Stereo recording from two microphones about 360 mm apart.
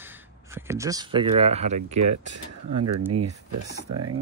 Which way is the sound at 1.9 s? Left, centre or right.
Right.